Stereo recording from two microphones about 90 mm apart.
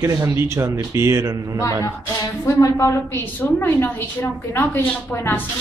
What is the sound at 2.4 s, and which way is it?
Speech, 35° left (ahead or behind).